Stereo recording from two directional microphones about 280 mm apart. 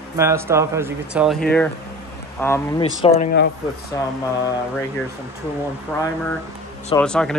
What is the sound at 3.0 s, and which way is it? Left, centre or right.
Speech, left.